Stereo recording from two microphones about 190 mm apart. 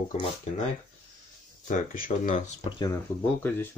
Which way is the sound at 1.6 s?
45° left (ahead or behind).